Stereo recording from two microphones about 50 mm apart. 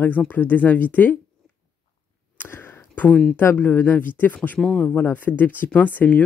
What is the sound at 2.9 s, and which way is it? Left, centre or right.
Speech, left.